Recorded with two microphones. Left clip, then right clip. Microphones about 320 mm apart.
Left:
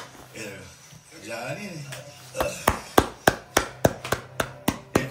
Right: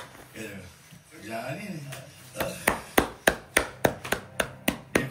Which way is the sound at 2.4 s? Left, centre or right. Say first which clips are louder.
Left 3 dB; centre.